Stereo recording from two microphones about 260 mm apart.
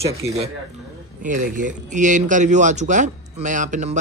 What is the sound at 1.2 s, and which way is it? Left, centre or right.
Speech, right.